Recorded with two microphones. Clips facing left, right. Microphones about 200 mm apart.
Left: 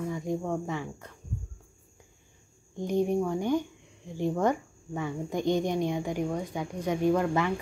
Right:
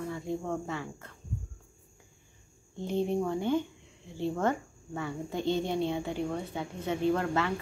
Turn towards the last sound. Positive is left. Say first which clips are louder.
# left 3 dB
turn(degrees=15)  # may be behind; listen again after turning